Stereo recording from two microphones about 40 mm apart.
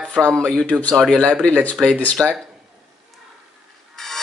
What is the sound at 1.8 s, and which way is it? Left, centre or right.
Speech, centre.